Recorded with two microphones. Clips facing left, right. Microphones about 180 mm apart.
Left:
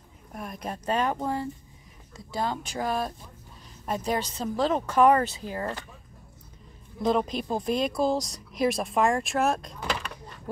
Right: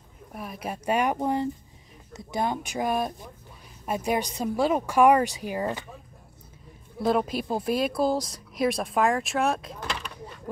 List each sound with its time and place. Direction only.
0.3 s speech: 5° right (ahead or behind)
7.0 s speech: 5° right (ahead or behind)